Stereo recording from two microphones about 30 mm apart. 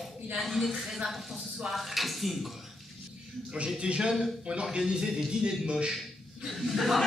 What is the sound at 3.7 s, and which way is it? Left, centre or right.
Speech, right.